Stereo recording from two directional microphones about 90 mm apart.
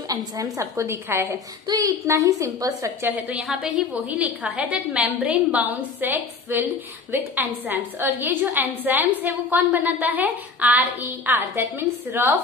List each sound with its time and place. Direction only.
0.1 s a woman's voice: 40° right (ahead or behind)
1.3 s a woman's voice: 40° right (ahead or behind)
3.1 s a woman's voice: 15° right (ahead or behind)
3.4 s a woman's voice: 5° right (ahead or behind)
4.1 s a woman's voice: 15° right (ahead or behind)